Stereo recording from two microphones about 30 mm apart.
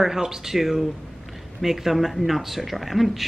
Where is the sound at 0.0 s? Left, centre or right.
Centre.